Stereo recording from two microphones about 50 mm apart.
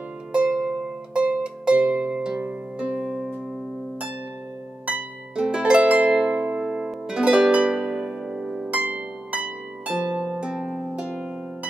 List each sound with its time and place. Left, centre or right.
0.5 s music: centre
1.1 s music: right
1.7 s harp: centre
4.8 s harp: right
8.6 s harp: right